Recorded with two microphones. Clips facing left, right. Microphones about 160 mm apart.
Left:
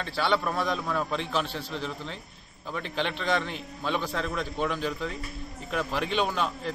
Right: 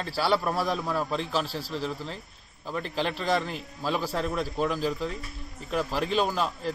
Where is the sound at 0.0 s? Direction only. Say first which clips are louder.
Right 1 dB; 5° right (ahead or behind).